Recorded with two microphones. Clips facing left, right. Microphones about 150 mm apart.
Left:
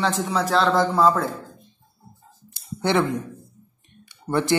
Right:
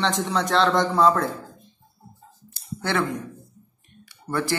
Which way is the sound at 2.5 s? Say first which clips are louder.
Left 4 dB; 20° left (ahead or behind).